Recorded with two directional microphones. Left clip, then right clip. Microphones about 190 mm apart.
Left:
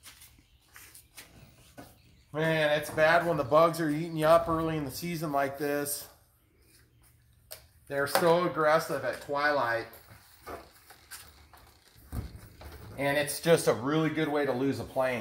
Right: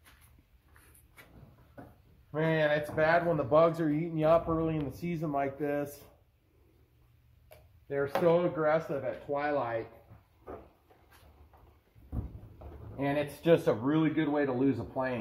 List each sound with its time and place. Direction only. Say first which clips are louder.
2.3 s speech: left 1 dB; 5° left (ahead or behind)
7.9 s speech: left 2 dB; 10° left (ahead or behind)
12.9 s speech: left 3 dB; 20° left (ahead or behind)